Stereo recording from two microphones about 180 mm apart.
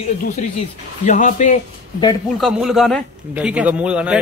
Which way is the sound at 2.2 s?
Centre (ahead or behind).